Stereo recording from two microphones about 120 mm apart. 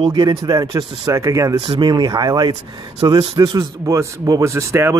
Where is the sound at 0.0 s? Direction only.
40° right (ahead or behind).